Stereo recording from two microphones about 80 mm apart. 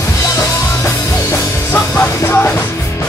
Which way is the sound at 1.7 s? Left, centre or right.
Centre.